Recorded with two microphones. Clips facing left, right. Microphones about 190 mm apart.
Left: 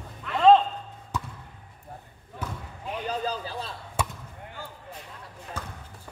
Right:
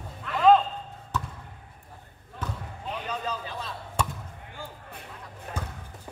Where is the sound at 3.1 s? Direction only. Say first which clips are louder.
Left 3 dB; 35° left (ahead or behind).